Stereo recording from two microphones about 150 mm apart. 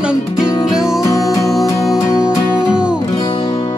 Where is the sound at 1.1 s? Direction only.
20° left (ahead or behind).